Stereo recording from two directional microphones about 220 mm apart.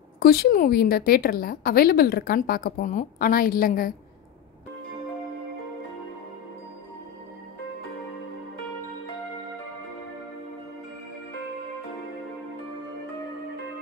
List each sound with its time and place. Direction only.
0.2 s a woman's voice: 45° left (ahead or behind)